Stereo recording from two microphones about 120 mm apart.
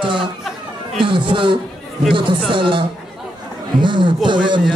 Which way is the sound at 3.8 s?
40° right (ahead or behind).